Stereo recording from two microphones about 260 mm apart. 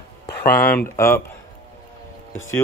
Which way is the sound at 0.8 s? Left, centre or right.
Centre.